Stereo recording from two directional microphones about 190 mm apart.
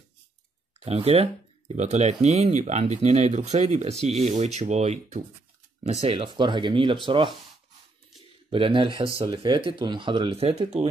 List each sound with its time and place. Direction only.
0.7 s speech: 30° right (ahead or behind)
8.5 s speech: 25° right (ahead or behind)